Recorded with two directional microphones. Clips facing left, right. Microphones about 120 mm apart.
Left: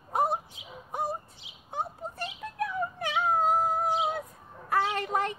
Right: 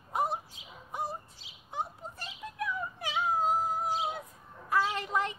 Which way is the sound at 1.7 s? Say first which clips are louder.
Left 3 dB; 55° left (ahead or behind).